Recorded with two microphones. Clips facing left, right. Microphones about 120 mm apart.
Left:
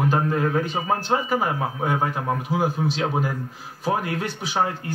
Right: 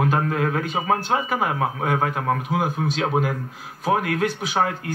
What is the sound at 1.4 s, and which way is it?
Speech, 60° right (ahead or behind).